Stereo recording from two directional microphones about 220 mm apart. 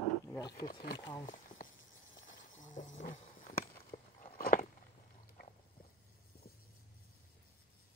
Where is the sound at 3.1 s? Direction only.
40° left (ahead or behind).